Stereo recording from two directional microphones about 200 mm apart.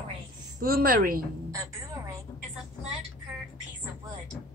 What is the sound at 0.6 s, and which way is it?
Speech, 45° right (ahead or behind).